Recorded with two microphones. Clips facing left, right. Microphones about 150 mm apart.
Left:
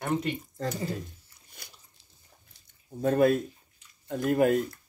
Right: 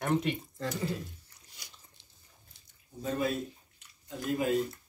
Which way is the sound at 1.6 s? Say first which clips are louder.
Left 5 dB; 55° left (ahead or behind).